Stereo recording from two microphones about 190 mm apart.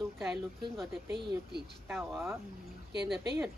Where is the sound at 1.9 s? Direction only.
10° right (ahead or behind).